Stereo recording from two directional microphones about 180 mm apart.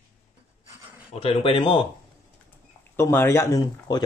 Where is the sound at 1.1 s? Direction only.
30° left (ahead or behind).